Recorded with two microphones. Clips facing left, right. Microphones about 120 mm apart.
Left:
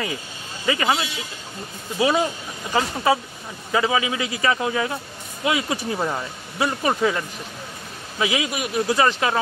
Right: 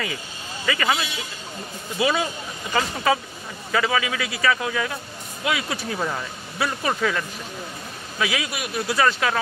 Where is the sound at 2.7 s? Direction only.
15° left (ahead or behind).